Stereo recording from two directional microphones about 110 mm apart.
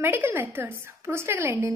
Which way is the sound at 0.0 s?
20° right (ahead or behind).